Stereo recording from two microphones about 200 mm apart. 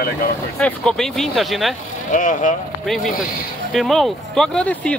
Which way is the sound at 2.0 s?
40° left (ahead or behind).